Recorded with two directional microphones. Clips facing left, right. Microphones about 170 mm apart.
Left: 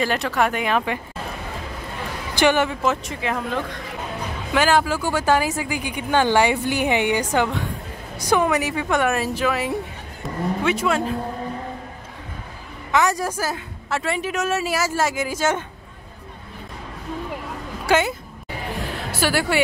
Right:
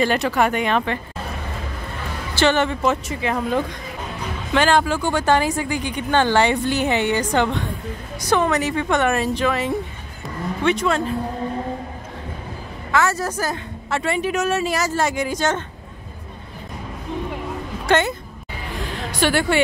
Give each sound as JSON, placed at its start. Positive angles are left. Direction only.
{"t": 0.0, "sound": "a woman's voice", "side_deg": 0}
{"t": 2.3, "sound": "a woman's voice", "side_deg": 10}
{"t": 4.5, "sound": "a woman's voice", "side_deg": 5}
{"t": 12.9, "sound": "a woman's voice", "side_deg": 15}
{"t": 17.8, "sound": "a woman's voice", "side_deg": 5}
{"t": 19.1, "sound": "a woman's voice", "side_deg": 5}